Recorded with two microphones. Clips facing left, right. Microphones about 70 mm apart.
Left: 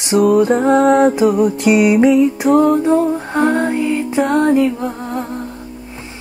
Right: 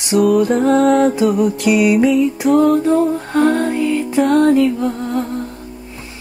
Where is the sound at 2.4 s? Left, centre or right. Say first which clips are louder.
Right 2 dB; centre.